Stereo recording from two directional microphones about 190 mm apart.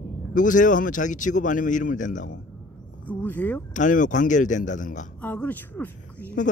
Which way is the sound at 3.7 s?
40° left (ahead or behind).